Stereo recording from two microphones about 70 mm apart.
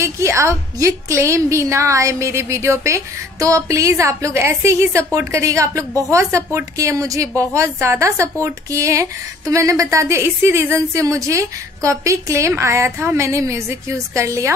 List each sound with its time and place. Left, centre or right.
0.0 s a woman's voice: right